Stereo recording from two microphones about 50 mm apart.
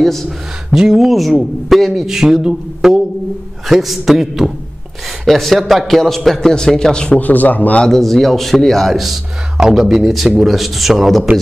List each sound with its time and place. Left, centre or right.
0.0 s a man's voice: centre
0.7 s a man's voice: centre
7.2 s speech: left
7.8 s a man's voice: centre